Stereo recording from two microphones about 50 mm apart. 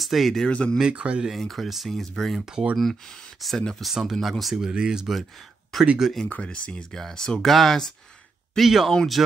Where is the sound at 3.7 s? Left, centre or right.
Centre.